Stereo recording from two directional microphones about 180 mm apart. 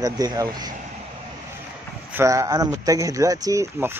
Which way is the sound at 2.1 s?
15° right (ahead or behind).